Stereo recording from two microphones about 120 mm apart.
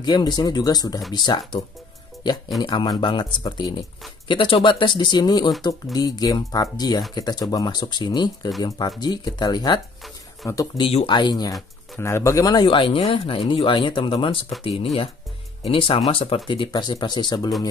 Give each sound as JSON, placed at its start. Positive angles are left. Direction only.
{"t": 0.0, "sound": "speech", "side_deg": 35}
{"t": 2.6, "sound": "speech", "side_deg": 35}
{"t": 10.8, "sound": "speech", "side_deg": 55}
{"t": 11.1, "sound": "speech", "side_deg": 40}
{"t": 12.0, "sound": "speech", "side_deg": 20}